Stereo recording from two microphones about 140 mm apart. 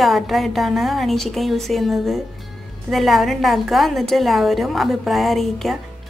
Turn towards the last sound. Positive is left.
turn(degrees=0)  # may be behind; listen again after turning